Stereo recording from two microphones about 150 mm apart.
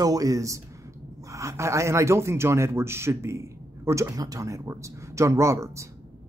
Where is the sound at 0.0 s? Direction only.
25° right (ahead or behind).